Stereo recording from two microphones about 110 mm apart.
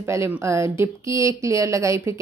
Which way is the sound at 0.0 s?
25° right (ahead or behind).